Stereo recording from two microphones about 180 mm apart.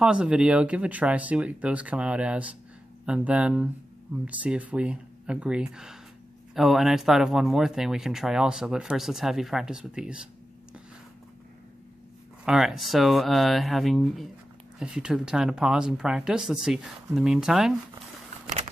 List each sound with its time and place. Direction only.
0.0 s speech: 5° right (ahead or behind)
12.4 s speech: centre (ahead or behind)